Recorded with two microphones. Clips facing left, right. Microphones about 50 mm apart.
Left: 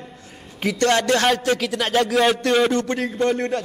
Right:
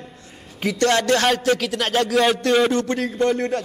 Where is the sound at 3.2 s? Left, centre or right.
Centre.